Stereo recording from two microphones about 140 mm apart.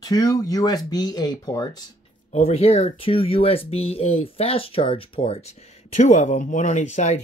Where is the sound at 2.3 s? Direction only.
45° left (ahead or behind).